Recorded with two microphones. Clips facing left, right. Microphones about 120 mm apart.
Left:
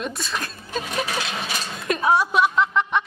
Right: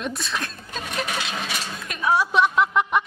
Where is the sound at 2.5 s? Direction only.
10° right (ahead or behind).